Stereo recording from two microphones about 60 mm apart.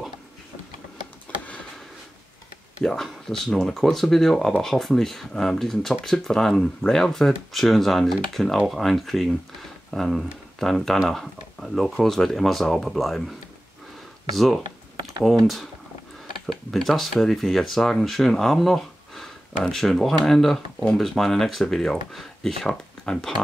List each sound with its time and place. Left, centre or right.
2.8 s speech: centre
14.3 s speech: centre
16.4 s speech: centre